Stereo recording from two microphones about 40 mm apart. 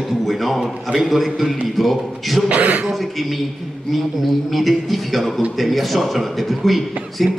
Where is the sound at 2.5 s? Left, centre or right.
Right.